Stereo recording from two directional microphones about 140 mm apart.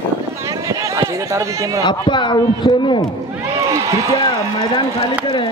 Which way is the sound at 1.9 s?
35° left (ahead or behind).